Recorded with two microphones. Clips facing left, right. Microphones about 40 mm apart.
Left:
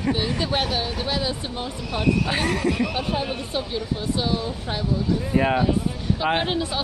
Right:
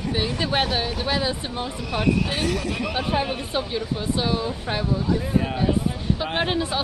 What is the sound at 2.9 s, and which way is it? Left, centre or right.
Speech, centre.